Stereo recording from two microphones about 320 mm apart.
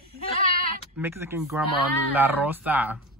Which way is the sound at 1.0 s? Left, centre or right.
Centre.